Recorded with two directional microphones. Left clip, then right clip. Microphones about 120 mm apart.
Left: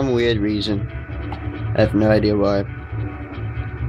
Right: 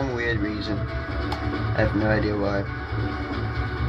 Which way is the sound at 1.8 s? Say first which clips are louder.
Left 7 dB; 40° left (ahead or behind).